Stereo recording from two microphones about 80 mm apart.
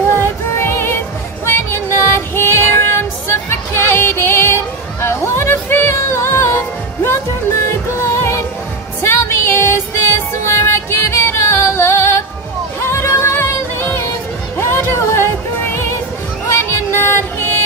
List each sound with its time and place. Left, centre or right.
0.2 s music: left